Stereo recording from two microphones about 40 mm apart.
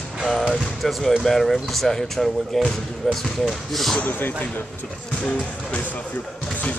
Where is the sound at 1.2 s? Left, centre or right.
Centre.